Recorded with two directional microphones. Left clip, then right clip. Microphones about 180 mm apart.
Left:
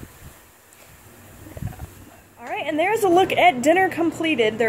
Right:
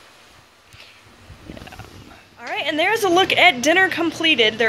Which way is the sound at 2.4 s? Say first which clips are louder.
Right 2 dB; 5° left (ahead or behind).